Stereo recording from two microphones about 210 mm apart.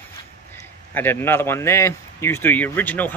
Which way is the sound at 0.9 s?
10° left (ahead or behind).